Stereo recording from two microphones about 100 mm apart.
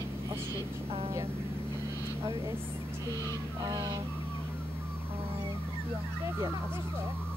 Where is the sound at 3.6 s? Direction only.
40° right (ahead or behind).